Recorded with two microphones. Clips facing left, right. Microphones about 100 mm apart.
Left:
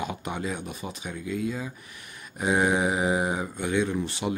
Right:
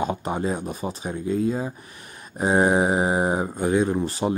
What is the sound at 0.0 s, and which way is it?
Speech, 35° right (ahead or behind).